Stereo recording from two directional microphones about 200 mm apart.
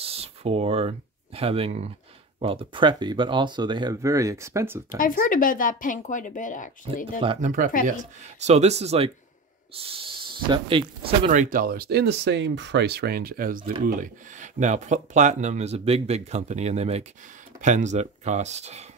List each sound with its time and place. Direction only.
0.0 s speech: 30° right (ahead or behind); by 4.8 s 15° right (ahead or behind)
4.9 s speech: 45° left (ahead or behind)
7.4 s speech: 40° right (ahead or behind)